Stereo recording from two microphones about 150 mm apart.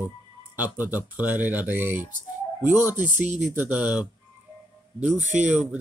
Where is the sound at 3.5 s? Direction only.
15° right (ahead or behind).